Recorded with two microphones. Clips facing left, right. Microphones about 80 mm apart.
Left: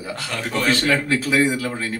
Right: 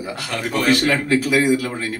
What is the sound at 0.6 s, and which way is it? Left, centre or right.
A man's voice, left.